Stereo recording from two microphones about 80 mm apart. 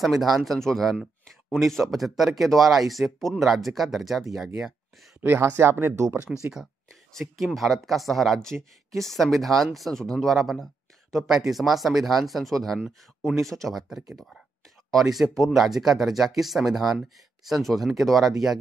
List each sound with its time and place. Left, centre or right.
0.0 s speech: centre
5.2 s speech: right
6.3 s speech: centre
7.2 s speech: centre